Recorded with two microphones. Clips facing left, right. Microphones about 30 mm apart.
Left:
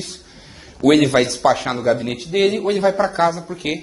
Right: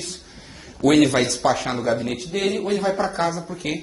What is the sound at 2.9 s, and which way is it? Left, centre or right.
Speech, centre.